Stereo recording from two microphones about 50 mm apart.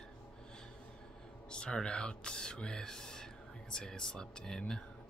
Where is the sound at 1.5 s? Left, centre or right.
Centre.